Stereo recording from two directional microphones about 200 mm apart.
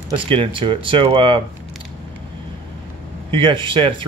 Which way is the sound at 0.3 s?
25° right (ahead or behind).